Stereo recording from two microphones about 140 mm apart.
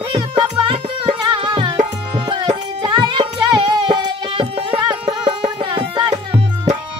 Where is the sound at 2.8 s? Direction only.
35° right (ahead or behind).